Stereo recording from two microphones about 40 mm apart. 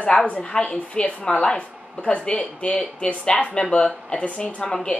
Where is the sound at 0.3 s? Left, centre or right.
Left.